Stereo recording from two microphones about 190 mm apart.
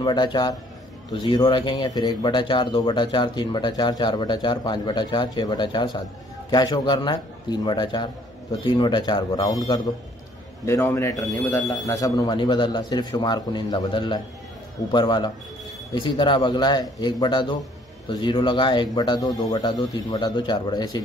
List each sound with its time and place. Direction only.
0.0 s speech: 25° left (ahead or behind)